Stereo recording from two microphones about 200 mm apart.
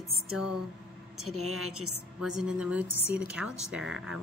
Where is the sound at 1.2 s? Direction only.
90° right.